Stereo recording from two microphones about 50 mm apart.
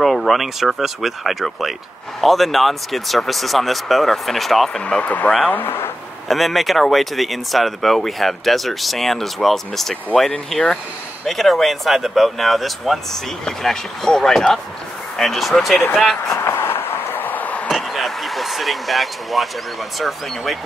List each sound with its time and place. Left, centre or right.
0.0 s speech: centre
4.8 s speech: left
5.5 s speech: left
6.2 s speech: centre
16.3 s a sound: left
17.6 s a sound: centre
20.0 s speech: centre